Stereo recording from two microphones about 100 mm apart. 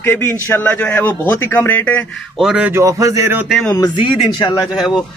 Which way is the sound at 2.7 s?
30° right (ahead or behind).